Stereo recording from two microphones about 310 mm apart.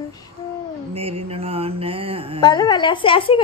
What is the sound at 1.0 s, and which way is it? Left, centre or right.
Speech, centre.